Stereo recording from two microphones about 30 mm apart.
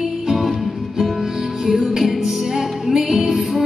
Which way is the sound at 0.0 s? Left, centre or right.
Centre.